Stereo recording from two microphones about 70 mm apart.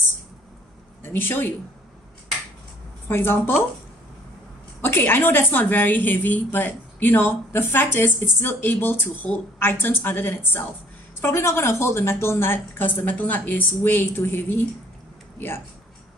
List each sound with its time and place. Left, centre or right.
1.0 s a woman's voice: left
3.1 s a woman's voice: left
4.8 s a woman's voice: left